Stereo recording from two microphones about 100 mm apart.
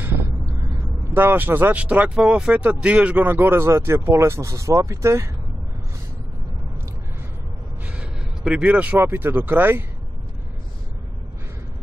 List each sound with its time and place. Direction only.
1.1 s speech: 20° right (ahead or behind)
7.8 s speech: 10° right (ahead or behind)